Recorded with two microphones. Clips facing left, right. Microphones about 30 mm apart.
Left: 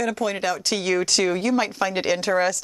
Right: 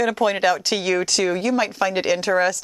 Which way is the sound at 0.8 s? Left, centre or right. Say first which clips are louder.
Right 1 dB; centre.